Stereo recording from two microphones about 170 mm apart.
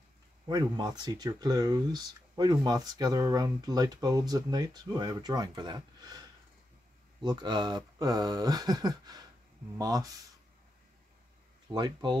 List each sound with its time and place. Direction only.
0.5 s speech: 25° right (ahead or behind)
7.2 s speech: 25° right (ahead or behind)
11.7 s speech: 25° right (ahead or behind)